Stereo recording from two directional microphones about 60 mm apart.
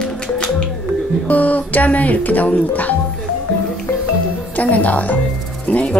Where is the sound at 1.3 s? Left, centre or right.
Left.